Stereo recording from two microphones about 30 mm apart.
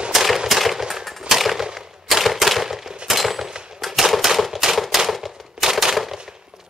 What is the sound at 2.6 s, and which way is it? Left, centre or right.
Gunshot, centre.